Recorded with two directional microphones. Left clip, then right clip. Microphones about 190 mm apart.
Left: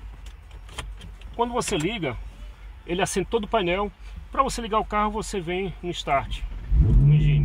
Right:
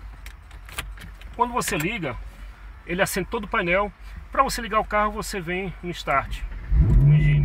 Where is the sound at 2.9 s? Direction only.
55° left (ahead or behind).